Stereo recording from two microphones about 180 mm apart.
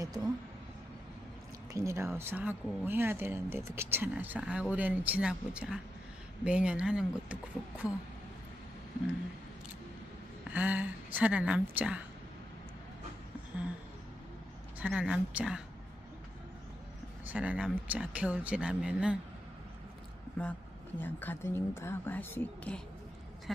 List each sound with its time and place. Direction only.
0.0 s speech: 20° right (ahead or behind)
1.7 s speech: 15° right (ahead or behind)
10.5 s speech: 10° right (ahead or behind)
14.8 s speech: 5° right (ahead or behind)
17.3 s speech: 10° right (ahead or behind)
20.4 s speech: 5° left (ahead or behind)